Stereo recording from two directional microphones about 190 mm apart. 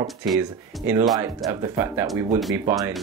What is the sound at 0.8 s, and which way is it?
Speech, 15° right (ahead or behind).